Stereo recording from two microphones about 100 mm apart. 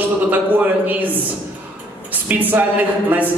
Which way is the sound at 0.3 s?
15° right (ahead or behind).